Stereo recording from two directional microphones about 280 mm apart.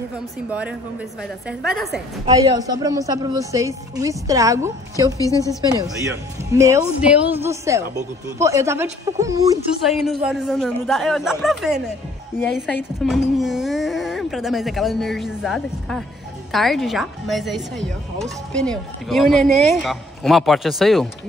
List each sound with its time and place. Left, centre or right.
0.5 s speech: centre
2.2 s a woman's voice: centre
5.2 s speech: centre
5.7 s a woman's voice: centre
9.8 s speech: centre